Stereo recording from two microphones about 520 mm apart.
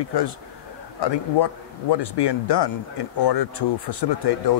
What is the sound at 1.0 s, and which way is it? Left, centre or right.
A man's voice, left.